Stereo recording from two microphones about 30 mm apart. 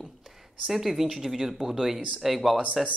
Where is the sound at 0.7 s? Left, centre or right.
Centre.